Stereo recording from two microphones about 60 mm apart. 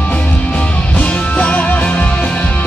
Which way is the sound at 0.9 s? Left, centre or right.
Left.